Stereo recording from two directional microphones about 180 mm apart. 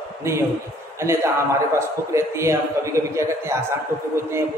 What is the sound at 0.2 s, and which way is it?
A man's voice, 15° right (ahead or behind).